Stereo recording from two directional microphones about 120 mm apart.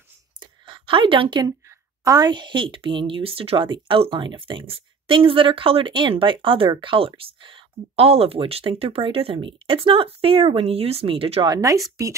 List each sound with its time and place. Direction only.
0.4 s a sound: 45° right (ahead or behind)
2.0 s speech: 35° right (ahead or behind); by 11.4 s 50° right (ahead or behind)
11.4 s speech: 30° right (ahead or behind)